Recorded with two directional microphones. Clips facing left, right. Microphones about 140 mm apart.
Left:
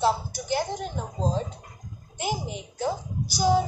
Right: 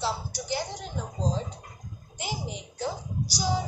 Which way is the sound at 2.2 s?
50° left (ahead or behind).